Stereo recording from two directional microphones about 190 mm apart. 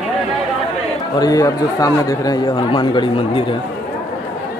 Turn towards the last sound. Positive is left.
turn(degrees=25)  # may be behind; listen again after turning